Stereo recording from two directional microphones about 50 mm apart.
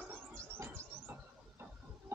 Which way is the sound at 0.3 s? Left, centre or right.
Right.